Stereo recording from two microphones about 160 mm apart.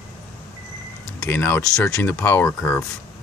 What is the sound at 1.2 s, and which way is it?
Speech, 15° left (ahead or behind).